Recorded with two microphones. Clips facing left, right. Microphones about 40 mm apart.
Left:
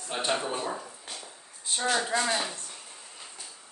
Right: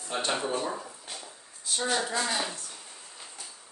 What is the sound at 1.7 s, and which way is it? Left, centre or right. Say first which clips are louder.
Speech: right 1 dB; left.